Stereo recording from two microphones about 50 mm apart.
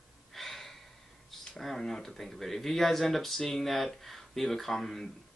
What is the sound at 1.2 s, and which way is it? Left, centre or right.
Speech, centre.